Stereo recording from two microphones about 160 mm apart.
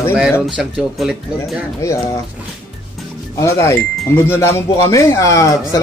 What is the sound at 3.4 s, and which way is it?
Speech, 20° left (ahead or behind).